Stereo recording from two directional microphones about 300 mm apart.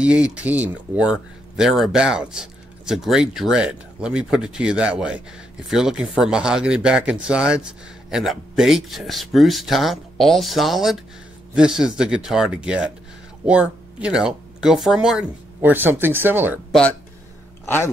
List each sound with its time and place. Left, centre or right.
0.0 s speech: centre